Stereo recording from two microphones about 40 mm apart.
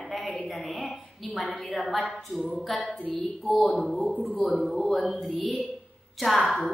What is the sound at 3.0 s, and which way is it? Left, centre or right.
Speech, left.